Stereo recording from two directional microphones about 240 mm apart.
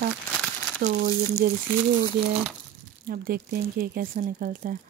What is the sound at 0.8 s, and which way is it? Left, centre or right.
Speech, right.